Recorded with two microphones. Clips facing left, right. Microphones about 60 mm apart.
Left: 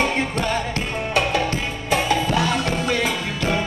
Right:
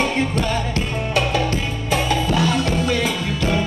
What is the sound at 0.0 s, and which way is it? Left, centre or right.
Music, left.